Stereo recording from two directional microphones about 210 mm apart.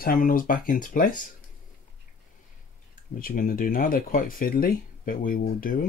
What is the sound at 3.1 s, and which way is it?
Speech, 40° left (ahead or behind).